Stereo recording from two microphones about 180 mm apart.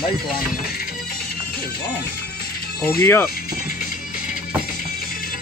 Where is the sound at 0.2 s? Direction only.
55° left (ahead or behind).